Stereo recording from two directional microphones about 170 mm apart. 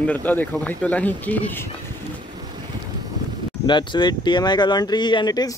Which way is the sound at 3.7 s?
25° left (ahead or behind).